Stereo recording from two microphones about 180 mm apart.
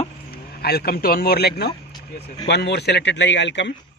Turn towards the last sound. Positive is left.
turn(degrees=75)  # may be behind; listen again after turning